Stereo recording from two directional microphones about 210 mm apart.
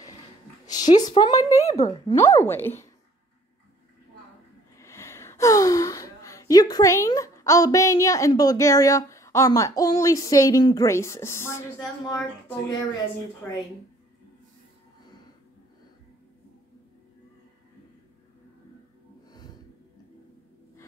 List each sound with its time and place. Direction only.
0.7 s a woman's voice: 20° left (ahead or behind)
4.7 s speech: 15° left (ahead or behind)
13.4 s speech: 10° left (ahead or behind)